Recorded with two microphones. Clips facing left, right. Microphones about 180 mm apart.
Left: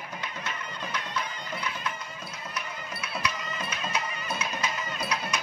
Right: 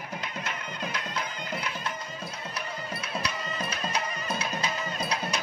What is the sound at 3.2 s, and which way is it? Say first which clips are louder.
Music: even; 35° right (ahead or behind).